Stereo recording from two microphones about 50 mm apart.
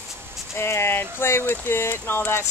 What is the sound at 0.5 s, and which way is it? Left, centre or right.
Speech, left.